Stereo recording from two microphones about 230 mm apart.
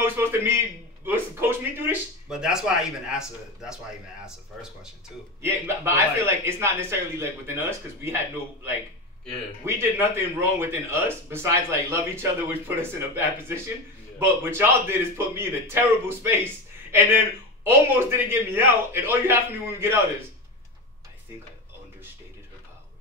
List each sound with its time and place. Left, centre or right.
0.0 s a man's voice: centre
5.4 s a man's voice: centre
10.1 s a man's voice: centre